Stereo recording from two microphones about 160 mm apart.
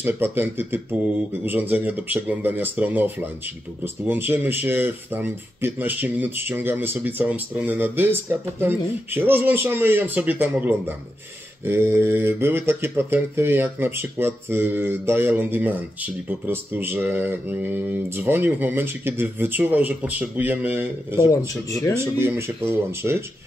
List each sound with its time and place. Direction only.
0.0 s speech: 10° right (ahead or behind)
21.6 s speech: 20° left (ahead or behind)
21.9 s speech: 15° right (ahead or behind)